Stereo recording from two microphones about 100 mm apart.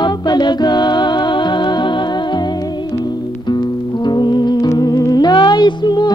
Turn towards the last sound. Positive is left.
turn(degrees=45)  # may be behind; listen again after turning